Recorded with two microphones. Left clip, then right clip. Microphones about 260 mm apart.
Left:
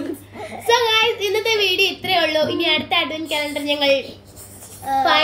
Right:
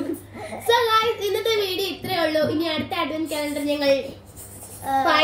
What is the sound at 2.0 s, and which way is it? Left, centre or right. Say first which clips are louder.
Speech: left 4 dB; centre.